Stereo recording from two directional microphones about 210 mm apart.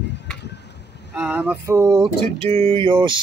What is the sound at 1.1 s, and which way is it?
Speech, 5° right (ahead or behind).